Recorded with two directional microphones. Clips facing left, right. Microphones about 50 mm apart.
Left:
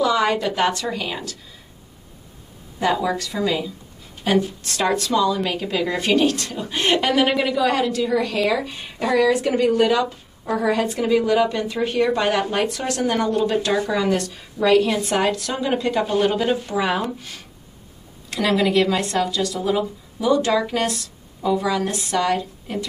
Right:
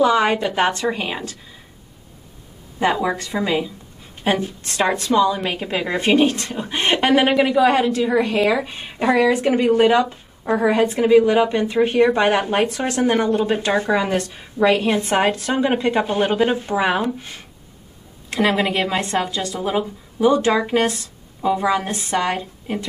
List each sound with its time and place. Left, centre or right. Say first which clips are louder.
0.0 s speech: right 3 dB; right
2.8 s speech: right 1 dB; right